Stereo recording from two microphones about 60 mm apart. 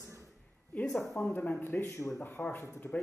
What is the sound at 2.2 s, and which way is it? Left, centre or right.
Speech, left.